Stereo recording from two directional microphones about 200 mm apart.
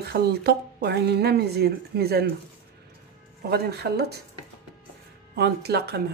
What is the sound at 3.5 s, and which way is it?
Speech, 55° right (ahead or behind).